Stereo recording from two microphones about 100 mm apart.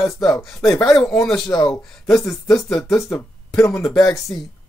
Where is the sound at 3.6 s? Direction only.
30° left (ahead or behind).